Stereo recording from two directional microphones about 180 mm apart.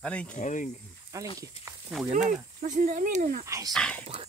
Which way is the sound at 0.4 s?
45° left (ahead or behind).